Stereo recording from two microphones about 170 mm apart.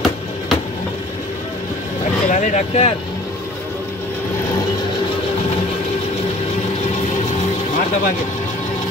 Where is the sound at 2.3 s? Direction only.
45° left (ahead or behind).